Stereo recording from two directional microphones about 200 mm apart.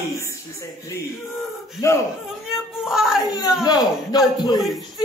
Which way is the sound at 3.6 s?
20° left (ahead or behind).